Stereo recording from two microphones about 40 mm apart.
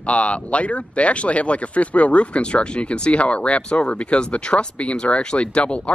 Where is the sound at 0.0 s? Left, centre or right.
Left.